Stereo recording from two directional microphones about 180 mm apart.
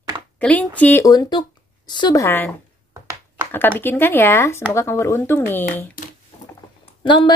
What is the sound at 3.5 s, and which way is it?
A woman's voice, 10° left (ahead or behind).